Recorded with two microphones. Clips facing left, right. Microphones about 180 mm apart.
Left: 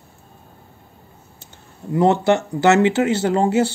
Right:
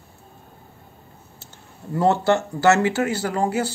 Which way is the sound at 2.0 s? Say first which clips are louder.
Left 3 dB; 20° left (ahead or behind).